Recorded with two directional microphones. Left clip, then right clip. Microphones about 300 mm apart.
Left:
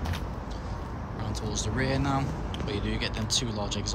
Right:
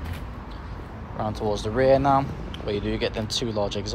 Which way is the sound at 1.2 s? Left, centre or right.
Centre.